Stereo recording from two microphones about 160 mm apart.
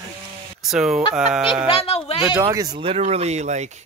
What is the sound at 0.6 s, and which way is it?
Fowl, 5° right (ahead or behind).